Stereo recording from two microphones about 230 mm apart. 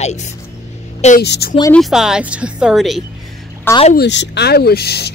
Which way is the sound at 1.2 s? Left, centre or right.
Left.